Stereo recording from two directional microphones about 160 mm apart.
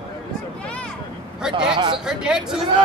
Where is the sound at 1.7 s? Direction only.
30° right (ahead or behind).